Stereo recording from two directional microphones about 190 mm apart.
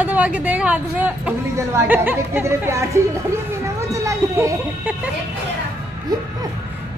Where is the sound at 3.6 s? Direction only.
15° right (ahead or behind).